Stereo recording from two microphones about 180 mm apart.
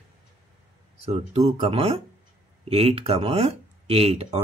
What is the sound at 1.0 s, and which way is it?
Speech, 35° right (ahead or behind).